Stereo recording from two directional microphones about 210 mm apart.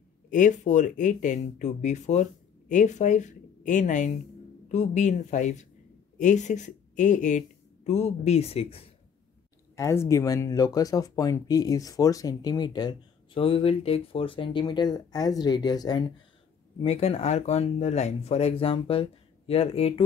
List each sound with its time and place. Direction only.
0.3 s speech: 35° left (ahead or behind)
9.8 s speech: 15° left (ahead or behind)
16.8 s speech: 30° left (ahead or behind)